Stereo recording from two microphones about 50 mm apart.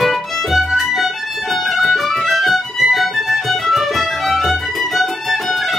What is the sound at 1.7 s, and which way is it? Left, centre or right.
Music, centre.